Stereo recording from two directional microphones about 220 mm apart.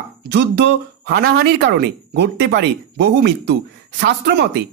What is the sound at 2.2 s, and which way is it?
A man's voice, 50° right (ahead or behind).